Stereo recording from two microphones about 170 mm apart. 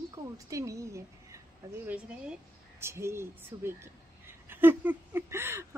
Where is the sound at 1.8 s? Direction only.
5° right (ahead or behind).